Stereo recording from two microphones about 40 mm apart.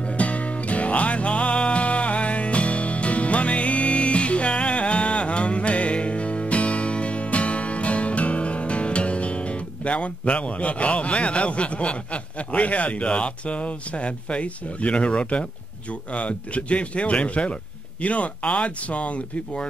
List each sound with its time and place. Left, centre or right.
0.0 s music: left
15.9 s speech: left